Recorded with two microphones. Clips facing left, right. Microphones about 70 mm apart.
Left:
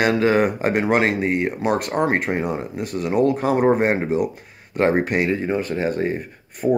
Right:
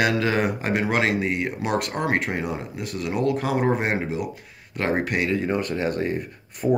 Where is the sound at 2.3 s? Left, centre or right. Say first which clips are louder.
Left 5 dB; centre.